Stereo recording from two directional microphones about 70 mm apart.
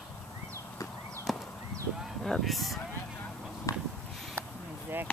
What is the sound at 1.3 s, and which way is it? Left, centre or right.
Clip-clop, centre.